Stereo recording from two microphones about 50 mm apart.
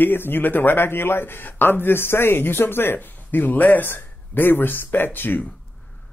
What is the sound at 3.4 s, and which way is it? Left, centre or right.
Speech, left.